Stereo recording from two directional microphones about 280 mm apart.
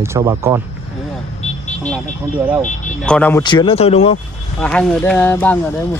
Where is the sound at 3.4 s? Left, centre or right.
Centre.